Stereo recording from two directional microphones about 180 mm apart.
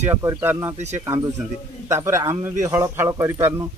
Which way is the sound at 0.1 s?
15° right (ahead or behind).